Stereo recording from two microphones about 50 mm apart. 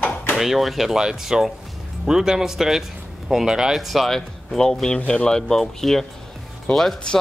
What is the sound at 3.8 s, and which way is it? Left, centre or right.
Speech, centre.